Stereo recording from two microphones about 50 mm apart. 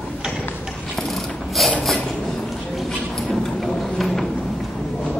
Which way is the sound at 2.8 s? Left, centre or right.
Centre.